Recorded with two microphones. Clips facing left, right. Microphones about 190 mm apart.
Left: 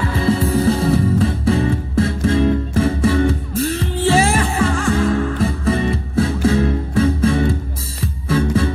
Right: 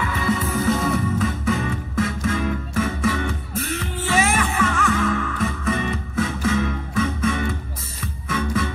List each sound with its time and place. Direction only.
0.0 s music: 35° left (ahead or behind)